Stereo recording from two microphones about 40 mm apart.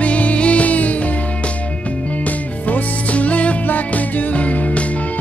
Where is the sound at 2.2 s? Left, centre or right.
Left.